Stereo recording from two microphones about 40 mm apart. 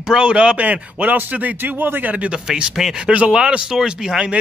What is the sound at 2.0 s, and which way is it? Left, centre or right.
A man's voice, right.